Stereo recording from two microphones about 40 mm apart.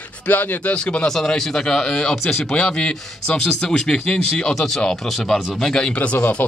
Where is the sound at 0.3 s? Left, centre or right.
Left.